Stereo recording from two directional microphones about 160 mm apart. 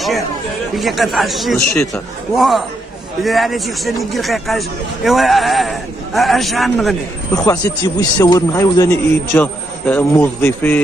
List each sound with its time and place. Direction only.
0.7 s speech: centre (ahead or behind)
7.4 s a man's voice: 25° left (ahead or behind)